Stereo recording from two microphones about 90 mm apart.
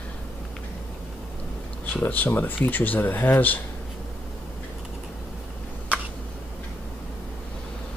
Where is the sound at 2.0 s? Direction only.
20° left (ahead or behind).